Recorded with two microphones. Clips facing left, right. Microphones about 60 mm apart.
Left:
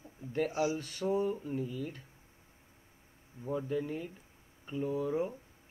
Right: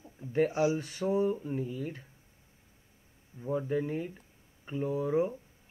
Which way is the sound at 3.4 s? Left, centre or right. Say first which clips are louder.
Right 3 dB; right.